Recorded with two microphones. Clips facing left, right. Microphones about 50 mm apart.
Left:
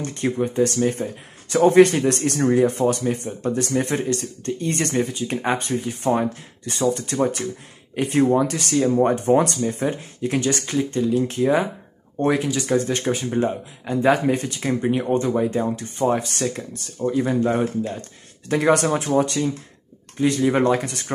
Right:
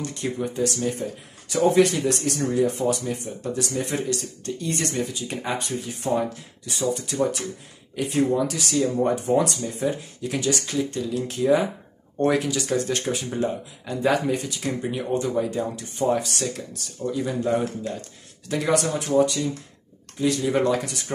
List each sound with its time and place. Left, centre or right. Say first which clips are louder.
0.0 s speech: left 5 dB; left
12.2 s speech: left 1 dB; centre
14.2 s speech: left 4 dB; left
18.7 s speech: left 4 dB; left
19.0 s speech: left 1 dB; left
20.2 s speech: left 3 dB; left